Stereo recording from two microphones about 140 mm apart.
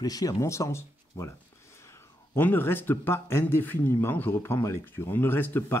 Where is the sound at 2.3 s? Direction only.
15° left (ahead or behind).